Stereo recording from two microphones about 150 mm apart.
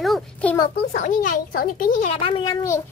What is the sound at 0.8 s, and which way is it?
Speech, 55° left (ahead or behind).